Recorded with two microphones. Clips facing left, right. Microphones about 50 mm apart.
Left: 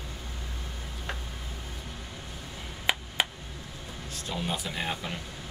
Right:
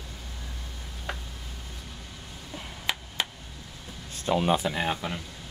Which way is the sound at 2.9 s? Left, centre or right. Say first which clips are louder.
Left 3 dB; left.